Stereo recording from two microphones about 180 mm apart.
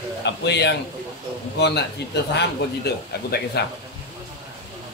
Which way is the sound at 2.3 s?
65° left (ahead or behind).